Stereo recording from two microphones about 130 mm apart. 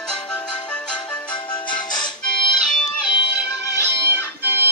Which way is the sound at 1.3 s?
35° left (ahead or behind).